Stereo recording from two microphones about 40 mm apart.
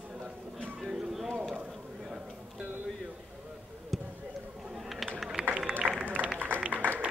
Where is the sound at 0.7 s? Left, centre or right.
Centre.